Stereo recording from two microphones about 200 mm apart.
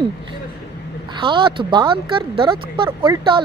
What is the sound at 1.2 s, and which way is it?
Speech, 25° right (ahead or behind).